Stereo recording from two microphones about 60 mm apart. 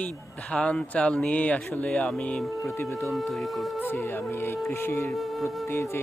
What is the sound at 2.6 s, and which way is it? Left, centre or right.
Speech, left.